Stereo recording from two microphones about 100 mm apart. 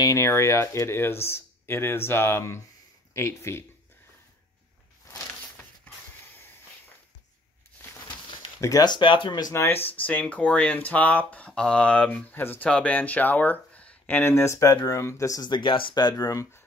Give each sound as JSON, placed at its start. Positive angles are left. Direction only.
{"t": 0.0, "sound": "speech", "side_deg": 30}
{"t": 5.0, "sound": "a sound", "side_deg": 20}
{"t": 8.5, "sound": "speech", "side_deg": 35}
{"t": 9.5, "sound": "speech", "side_deg": 25}
{"t": 9.9, "sound": "speech", "side_deg": 15}
{"t": 15.5, "sound": "speech", "side_deg": 55}
{"t": 15.9, "sound": "speech", "side_deg": 40}